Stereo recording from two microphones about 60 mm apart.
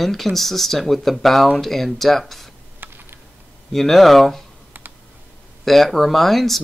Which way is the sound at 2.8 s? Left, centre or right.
Right.